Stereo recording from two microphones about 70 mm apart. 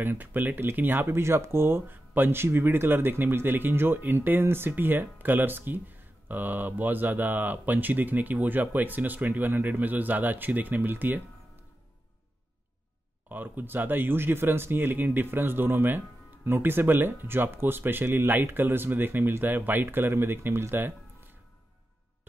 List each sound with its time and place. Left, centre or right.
0.0 s speech: right
13.3 s speech: right